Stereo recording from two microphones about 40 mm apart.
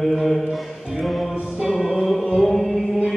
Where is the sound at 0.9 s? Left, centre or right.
Centre.